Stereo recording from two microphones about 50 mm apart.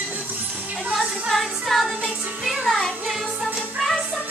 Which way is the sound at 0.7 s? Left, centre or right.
Right.